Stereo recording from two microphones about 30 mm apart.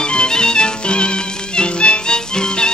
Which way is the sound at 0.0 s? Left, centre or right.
Left.